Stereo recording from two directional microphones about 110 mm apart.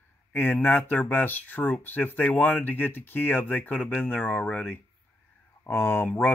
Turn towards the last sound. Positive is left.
turn(degrees=15)  # may be behind; listen again after turning